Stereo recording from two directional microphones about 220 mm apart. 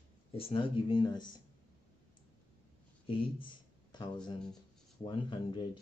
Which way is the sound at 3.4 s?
20° left (ahead or behind).